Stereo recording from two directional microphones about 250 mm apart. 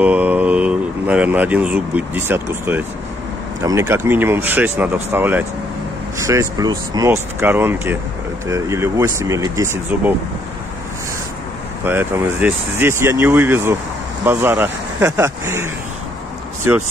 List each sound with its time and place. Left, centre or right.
0.0 s speech: centre
11.8 s speech: centre